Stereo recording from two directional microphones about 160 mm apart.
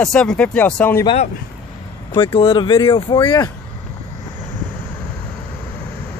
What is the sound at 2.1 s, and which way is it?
Speech, 35° left (ahead or behind).